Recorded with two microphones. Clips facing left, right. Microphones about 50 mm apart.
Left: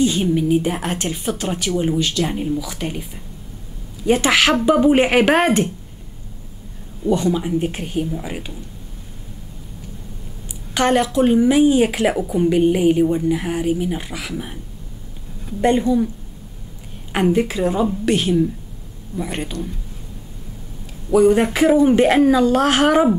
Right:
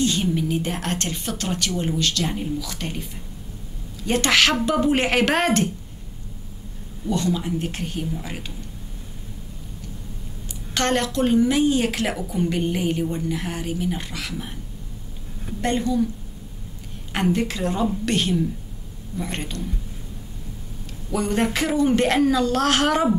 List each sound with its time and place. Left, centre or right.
0.0 s a woman's voice: centre
7.1 s a woman's voice: centre
10.7 s a woman's voice: centre
15.6 s a woman's voice: centre
17.1 s a woman's voice: centre
21.1 s a woman's voice: centre